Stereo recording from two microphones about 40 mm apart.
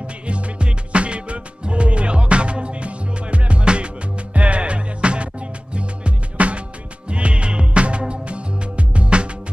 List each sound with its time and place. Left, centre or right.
0.3 s music: right